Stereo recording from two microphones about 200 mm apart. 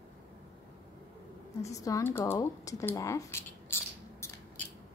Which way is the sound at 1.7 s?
15° left (ahead or behind).